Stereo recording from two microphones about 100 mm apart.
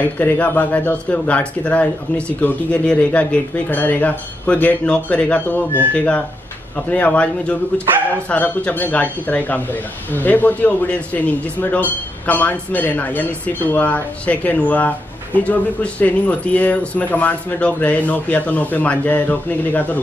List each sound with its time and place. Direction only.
0.0 s speech: 15° left (ahead or behind)